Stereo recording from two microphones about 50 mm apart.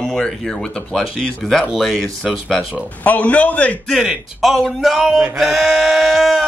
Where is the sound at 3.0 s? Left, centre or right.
Left.